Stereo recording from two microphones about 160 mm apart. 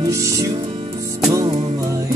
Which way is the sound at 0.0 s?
20° right (ahead or behind).